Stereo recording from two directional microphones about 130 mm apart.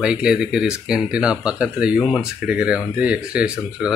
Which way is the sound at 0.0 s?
5° right (ahead or behind).